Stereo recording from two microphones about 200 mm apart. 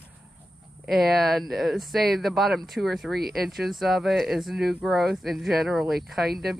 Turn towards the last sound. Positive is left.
turn(degrees=0)  # may be behind; listen again after turning